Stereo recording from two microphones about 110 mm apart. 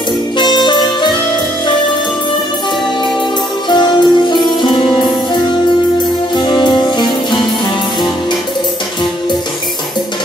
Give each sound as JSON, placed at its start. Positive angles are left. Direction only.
{"t": 0.4, "sound": "music", "side_deg": 45}
{"t": 3.6, "sound": "music", "side_deg": 45}
{"t": 6.3, "sound": "music", "side_deg": 45}